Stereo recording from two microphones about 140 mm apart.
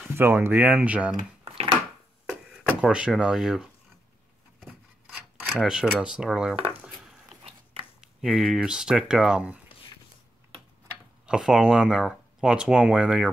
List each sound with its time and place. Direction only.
0.1 s speech: 15° right (ahead or behind)
1.4 s a sound: 45° right (ahead or behind)
2.7 s speech: 5° right (ahead or behind)
4.6 s rub: centre (ahead or behind)
5.6 s speech: centre (ahead or behind)
8.0 s speech: centre (ahead or behind)
11.2 s speech: 5° right (ahead or behind)